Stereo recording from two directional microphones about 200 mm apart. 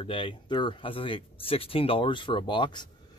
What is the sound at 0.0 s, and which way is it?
Speech, 25° left (ahead or behind).